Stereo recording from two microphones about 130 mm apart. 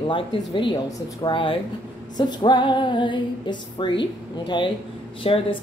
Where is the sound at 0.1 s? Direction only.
40° left (ahead or behind).